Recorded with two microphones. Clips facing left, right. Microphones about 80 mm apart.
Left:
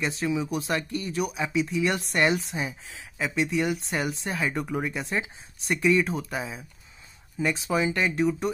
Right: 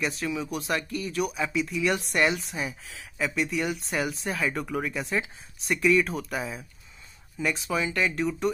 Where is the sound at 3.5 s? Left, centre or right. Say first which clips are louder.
Left 2 dB; centre.